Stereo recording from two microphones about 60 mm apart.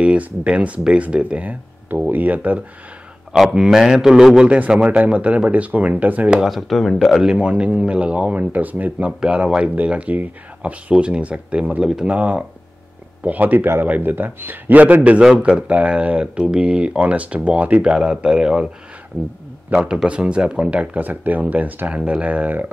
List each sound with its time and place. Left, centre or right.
0.0 s speech: right
3.5 s speech: centre
4.5 s speech: centre
6.3 s speech: centre
7.2 s speech: centre; by 9.1 s right
9.2 s a man's voice: centre
15.3 s speech: centre
17.9 s speech: centre
19.7 s speech: centre